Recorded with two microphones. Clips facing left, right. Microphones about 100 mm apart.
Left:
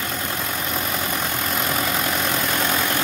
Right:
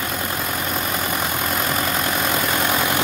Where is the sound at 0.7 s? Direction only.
5° right (ahead or behind).